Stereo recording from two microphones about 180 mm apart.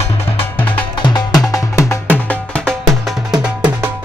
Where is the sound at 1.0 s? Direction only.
25° left (ahead or behind).